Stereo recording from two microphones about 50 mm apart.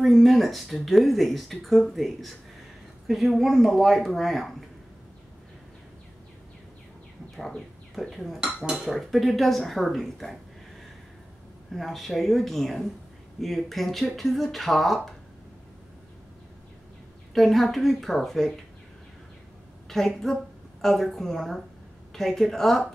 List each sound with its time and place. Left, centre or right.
0.0 s speech: centre
7.3 s speech: centre
8.5 s speech: centre
8.7 s speech: centre
11.7 s speech: centre
17.3 s speech: centre
19.9 s a woman's voice: centre